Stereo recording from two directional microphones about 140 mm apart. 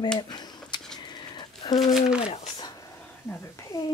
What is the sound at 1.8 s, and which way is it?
Speech, 5° right (ahead or behind).